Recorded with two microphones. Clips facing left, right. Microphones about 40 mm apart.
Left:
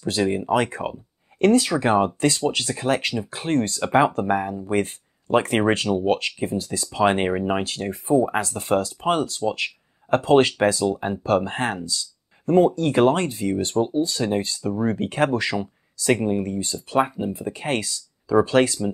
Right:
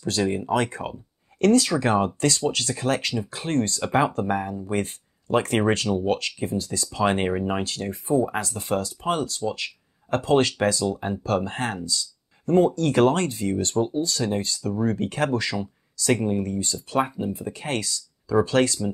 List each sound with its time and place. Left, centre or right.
0.0 s speech: centre
4.6 s speech: left; by 7.6 s centre
7.6 s speech: left
12.7 s speech: left
14.7 s speech: centre
17.3 s speech: left